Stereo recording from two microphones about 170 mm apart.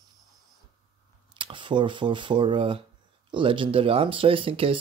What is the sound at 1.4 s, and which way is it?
Speech, 30° right (ahead or behind).